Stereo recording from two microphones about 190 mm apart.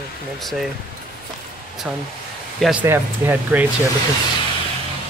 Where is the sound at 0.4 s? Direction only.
Centre (ahead or behind).